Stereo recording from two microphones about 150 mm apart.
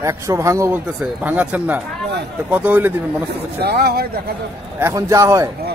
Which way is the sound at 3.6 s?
90° right.